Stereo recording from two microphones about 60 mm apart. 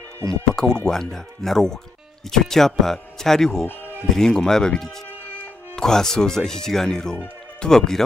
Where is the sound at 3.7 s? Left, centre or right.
Left.